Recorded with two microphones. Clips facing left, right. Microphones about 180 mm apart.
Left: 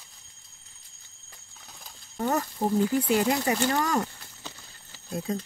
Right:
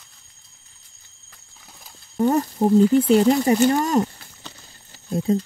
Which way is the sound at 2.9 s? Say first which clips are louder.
Right 8 dB; 30° right (ahead or behind).